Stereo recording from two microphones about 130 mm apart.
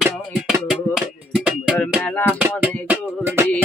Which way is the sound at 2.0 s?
10° left (ahead or behind).